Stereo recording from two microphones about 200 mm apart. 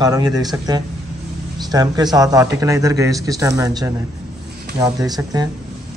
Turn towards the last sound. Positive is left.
turn(degrees=-20)  # may be behind; listen again after turning